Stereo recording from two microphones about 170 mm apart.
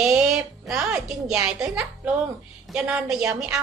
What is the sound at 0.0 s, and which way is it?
A woman's voice, 5° right (ahead or behind).